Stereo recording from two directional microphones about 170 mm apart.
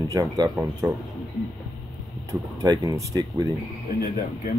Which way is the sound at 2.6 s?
20° right (ahead or behind).